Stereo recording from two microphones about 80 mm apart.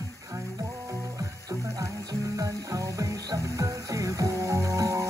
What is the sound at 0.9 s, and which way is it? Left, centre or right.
Music, right.